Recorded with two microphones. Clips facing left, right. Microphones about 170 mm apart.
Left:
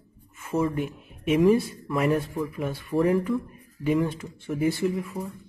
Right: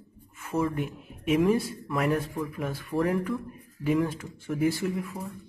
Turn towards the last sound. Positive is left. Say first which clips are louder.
# left 4 dB
turn(degrees=0)  # may be behind; listen again after turning